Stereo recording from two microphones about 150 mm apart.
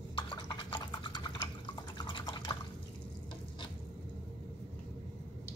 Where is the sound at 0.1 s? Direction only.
30° left (ahead or behind).